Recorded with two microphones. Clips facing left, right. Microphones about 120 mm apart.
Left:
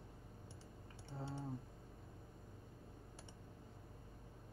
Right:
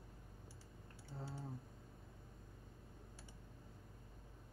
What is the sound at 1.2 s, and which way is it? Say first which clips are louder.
Typing: left 4 dB; 25° left (ahead or behind).